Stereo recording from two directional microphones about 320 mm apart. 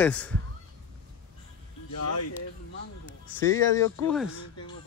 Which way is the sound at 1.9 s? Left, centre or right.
Left.